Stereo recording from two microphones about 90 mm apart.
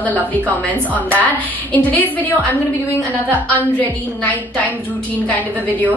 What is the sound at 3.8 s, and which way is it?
A woman's voice, 15° left (ahead or behind).